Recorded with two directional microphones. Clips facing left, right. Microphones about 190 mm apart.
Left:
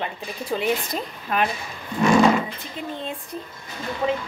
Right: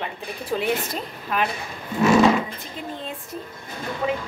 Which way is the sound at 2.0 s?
5° right (ahead or behind).